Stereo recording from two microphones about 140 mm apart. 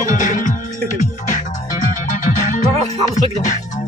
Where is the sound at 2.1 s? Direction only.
65° left (ahead or behind).